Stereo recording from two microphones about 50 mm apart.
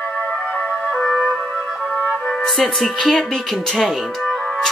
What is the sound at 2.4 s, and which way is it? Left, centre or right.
Speech, centre.